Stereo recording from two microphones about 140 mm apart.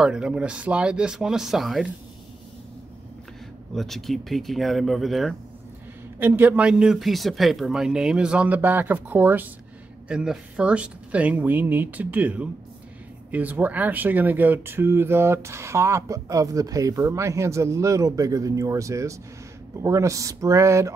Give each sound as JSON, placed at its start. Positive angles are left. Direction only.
{"t": 0.0, "sound": "speech", "side_deg": -5}
{"t": 3.7, "sound": "speech", "side_deg": 0}
{"t": 6.1, "sound": "a man's voice", "side_deg": -15}